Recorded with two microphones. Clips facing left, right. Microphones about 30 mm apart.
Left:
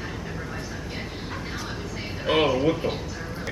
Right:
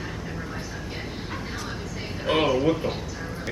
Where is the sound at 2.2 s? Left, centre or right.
Centre.